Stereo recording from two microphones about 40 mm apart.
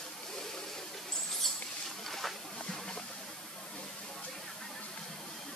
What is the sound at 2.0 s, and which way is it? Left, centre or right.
Boat, centre.